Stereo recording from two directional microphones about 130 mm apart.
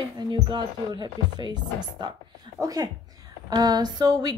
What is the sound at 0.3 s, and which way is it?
Speech, 35° right (ahead or behind).